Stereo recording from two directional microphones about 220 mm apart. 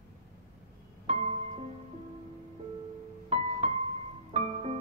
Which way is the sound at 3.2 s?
30° right (ahead or behind).